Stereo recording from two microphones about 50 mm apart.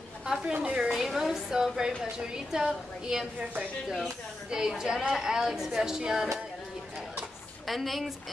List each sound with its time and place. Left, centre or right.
0.5 s a woman's voice: right
0.9 s a woman's voice: centre
4.5 s a woman's voice: centre
7.6 s a woman's voice: centre